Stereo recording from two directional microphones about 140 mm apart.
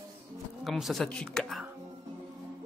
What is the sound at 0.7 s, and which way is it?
Speech, centre (ahead or behind).